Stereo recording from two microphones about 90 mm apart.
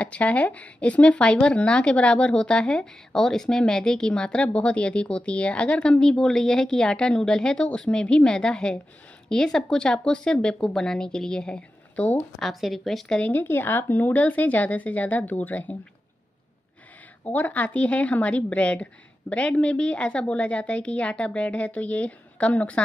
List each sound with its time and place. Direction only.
0.0 s speech: 15° left (ahead or behind)
12.4 s speech: centre (ahead or behind)
13.2 s speech: 20° left (ahead or behind)
17.2 s speech: 20° left (ahead or behind)